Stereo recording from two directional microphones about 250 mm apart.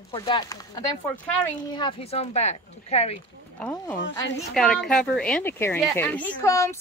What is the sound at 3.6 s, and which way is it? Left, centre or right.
Speech, centre.